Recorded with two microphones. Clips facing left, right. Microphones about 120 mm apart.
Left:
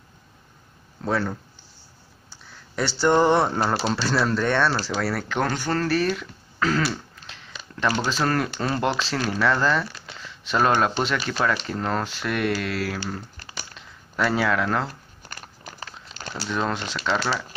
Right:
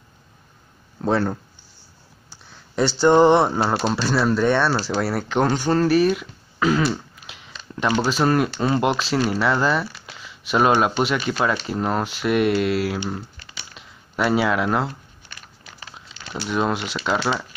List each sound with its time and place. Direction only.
1.0 s speech: 25° right (ahead or behind)
3.0 s speech: 20° right (ahead or behind)
15.2 s crumpling: 45° left (ahead or behind)
16.4 s speech: 15° right (ahead or behind)